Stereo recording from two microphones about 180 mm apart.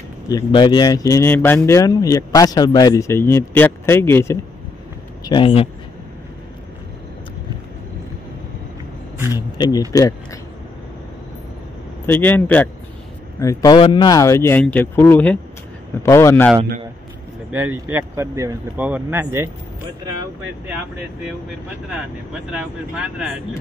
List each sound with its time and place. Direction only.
0.3 s speech: 25° left (ahead or behind)
5.2 s speech: 25° left (ahead or behind)
9.9 s speech: 20° left (ahead or behind)
12.1 s speech: 10° left (ahead or behind)
17.5 s speech: 10° right (ahead or behind)
20.6 s speech: 10° right (ahead or behind)
22.5 s speech: 5° right (ahead or behind)